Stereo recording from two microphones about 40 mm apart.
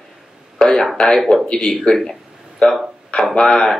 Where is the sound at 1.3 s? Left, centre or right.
Centre.